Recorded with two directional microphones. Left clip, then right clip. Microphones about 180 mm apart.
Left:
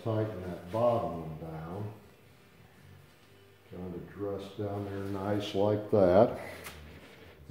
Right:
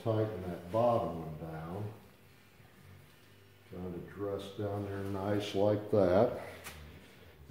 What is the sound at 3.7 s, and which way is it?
Speech, 15° right (ahead or behind).